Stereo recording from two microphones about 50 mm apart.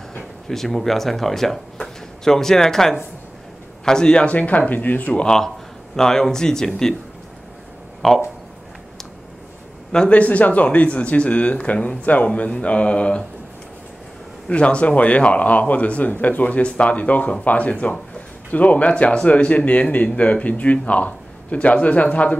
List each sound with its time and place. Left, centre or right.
0.5 s speech: centre
4.3 s speech: left
5.1 s speech: centre
9.9 s speech: left
14.5 s speech: left